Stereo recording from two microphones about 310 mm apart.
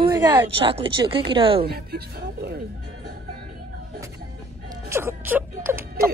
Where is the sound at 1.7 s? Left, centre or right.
Right.